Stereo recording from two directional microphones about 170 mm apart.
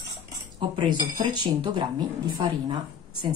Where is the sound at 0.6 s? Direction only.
25° right (ahead or behind).